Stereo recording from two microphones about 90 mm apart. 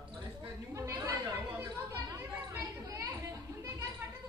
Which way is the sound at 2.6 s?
40° right (ahead or behind).